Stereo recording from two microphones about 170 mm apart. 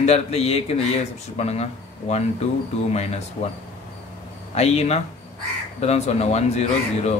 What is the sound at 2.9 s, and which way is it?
Speech, 40° left (ahead or behind).